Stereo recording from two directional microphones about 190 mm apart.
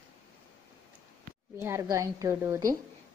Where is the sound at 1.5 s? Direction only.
15° right (ahead or behind).